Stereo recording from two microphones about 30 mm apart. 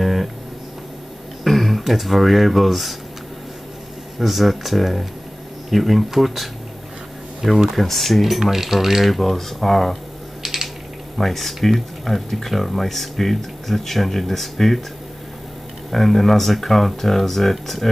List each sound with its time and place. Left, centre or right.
0.0 s a sound: centre
1.4 s speech: centre
4.2 s speech: centre
7.7 s speech: centre
9.0 s speech: centre
10.4 s ratchet: centre
11.1 s speech: centre
15.9 s speech: centre